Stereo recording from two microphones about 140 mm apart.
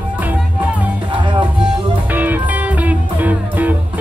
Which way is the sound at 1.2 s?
35° right (ahead or behind).